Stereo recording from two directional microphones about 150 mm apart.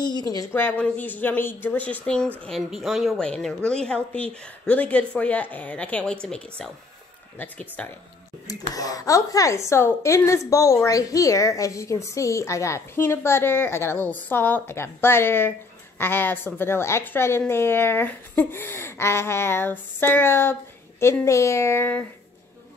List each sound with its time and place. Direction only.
0.0 s a woman's voice: 25° left (ahead or behind); by 7.9 s 10° left (ahead or behind)
8.7 s a woman's voice: 25° left (ahead or behind)